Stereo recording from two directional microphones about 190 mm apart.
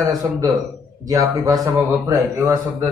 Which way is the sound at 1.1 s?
20° right (ahead or behind).